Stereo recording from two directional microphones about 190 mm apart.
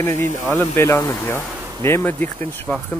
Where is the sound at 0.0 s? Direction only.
15° left (ahead or behind).